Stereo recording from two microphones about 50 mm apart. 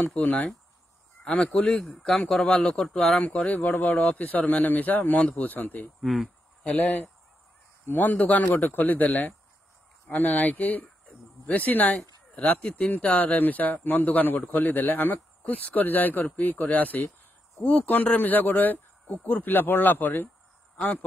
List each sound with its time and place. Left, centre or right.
0.0 s a man's voice: left
1.2 s a man's voice: centre
1.5 s a man's voice: centre
3.2 s a man's voice: left
5.9 s speech: centre
8.0 s a man's voice: left